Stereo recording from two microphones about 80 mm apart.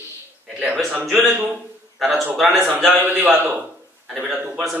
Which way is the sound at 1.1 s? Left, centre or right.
Right.